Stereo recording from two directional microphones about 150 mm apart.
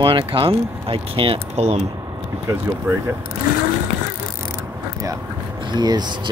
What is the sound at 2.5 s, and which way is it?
Speech, 15° right (ahead or behind).